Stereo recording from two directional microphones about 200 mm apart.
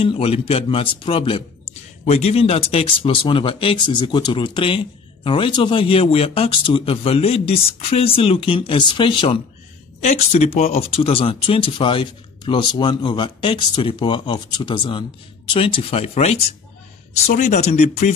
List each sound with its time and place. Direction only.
0.0 s speech: 25° left (ahead or behind)